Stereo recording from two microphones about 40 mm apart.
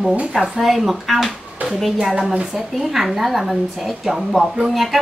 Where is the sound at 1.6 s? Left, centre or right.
Right.